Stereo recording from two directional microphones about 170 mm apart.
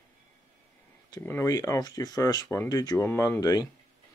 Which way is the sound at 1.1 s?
15° left (ahead or behind).